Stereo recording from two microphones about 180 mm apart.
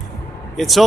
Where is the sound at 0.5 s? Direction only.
Centre (ahead or behind).